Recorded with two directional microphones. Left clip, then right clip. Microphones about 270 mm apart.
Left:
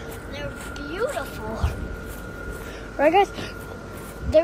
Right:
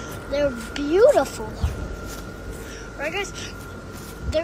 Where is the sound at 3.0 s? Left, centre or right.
Centre.